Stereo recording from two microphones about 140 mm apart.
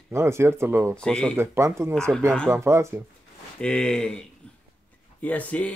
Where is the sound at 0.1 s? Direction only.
20° right (ahead or behind).